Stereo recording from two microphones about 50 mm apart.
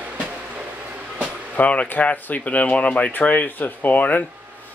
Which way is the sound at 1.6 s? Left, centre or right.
Left.